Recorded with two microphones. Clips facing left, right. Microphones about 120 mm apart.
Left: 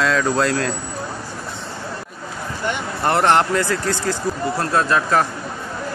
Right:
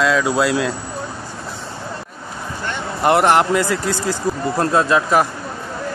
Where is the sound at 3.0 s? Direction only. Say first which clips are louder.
Right 3 dB; 15° right (ahead or behind).